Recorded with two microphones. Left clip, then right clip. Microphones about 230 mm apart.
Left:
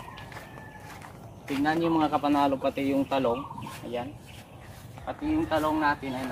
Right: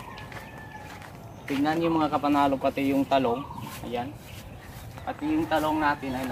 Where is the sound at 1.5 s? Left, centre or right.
Centre; by 3.3 s right.